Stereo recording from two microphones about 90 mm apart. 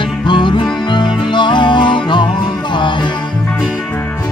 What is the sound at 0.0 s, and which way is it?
Music, 60° left (ahead or behind).